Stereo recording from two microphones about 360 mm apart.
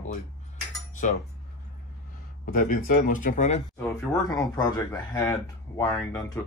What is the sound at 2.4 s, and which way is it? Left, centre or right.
Speech, left.